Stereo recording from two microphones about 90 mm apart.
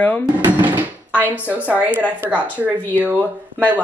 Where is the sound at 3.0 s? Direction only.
20° right (ahead or behind).